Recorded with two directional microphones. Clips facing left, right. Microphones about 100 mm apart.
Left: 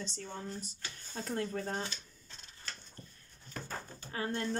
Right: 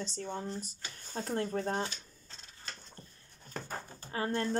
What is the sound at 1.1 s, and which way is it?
Speech, 35° right (ahead or behind).